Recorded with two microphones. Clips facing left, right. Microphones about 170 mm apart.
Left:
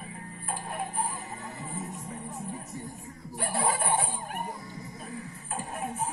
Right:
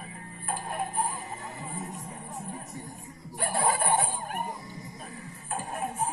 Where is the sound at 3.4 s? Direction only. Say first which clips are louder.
Right 2 dB; 45° right (ahead or behind).